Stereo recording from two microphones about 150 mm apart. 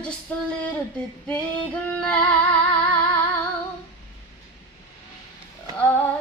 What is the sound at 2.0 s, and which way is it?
Female singing, 5° left (ahead or behind).